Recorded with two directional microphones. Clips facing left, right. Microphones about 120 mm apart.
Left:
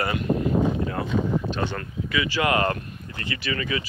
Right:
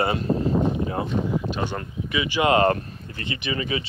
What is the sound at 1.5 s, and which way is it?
Speech, 15° right (ahead or behind).